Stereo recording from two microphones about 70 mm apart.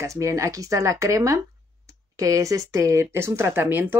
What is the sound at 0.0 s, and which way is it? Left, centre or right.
Speech, right.